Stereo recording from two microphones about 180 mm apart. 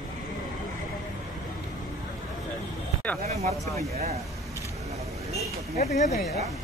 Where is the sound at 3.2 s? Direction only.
40° right (ahead or behind).